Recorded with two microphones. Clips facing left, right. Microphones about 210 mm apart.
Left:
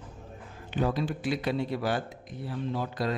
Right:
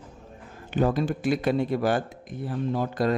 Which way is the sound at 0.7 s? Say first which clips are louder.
Right 5 dB; 50° right (ahead or behind).